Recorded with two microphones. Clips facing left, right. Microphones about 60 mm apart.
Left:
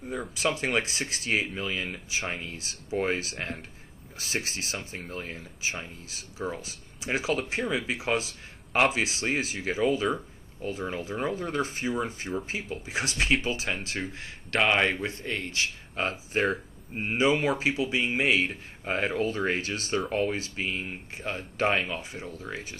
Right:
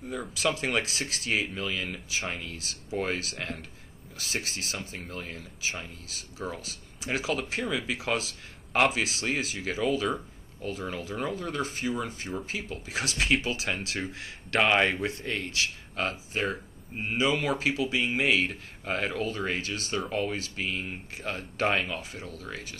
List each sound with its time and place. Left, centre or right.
0.2 s speech: centre
12.8 s speech: centre
16.0 s speech: centre
16.3 s speech: left; by 18.5 s centre
18.5 s speech: centre
20.0 s speech: centre